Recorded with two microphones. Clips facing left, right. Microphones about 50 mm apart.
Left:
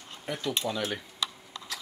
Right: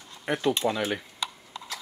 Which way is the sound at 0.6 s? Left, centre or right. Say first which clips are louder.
Right 4 dB; centre.